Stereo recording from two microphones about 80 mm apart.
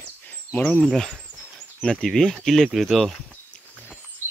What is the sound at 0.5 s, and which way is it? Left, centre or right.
Speech, centre.